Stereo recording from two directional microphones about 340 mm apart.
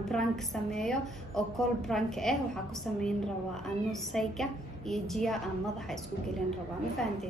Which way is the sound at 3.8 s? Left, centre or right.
Centre.